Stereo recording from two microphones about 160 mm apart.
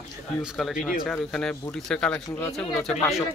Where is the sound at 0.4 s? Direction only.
Centre (ahead or behind).